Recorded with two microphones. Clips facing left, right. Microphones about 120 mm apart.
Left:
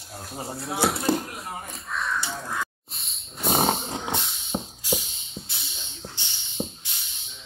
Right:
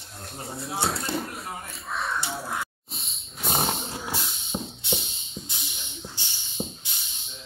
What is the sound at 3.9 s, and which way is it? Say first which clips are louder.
Music: left 3 dB; 20° left (ahead or behind).